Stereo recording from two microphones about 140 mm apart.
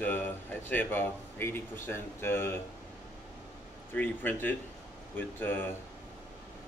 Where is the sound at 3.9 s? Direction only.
15° left (ahead or behind).